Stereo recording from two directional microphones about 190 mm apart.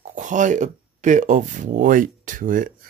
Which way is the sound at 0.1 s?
40° right (ahead or behind).